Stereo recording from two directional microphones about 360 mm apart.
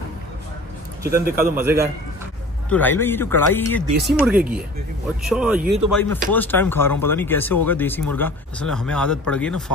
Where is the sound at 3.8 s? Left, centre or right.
Right.